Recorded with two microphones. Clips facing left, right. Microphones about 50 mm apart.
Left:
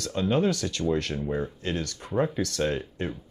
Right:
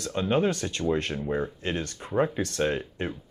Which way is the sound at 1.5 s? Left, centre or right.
Right.